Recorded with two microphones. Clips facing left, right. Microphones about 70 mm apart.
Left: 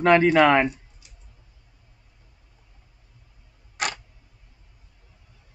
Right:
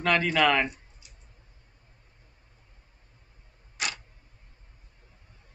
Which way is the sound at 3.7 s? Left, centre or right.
Left.